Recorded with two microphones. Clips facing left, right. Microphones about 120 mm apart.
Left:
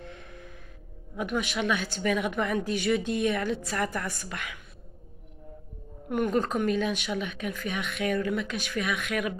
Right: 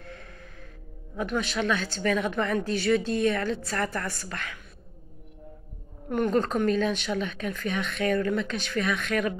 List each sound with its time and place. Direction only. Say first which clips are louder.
0.0 s music: left 1 dB; 20° left (ahead or behind)
1.1 s speech: right 1 dB; 15° left (ahead or behind)
6.0 s speech: right 2 dB; 10° left (ahead or behind)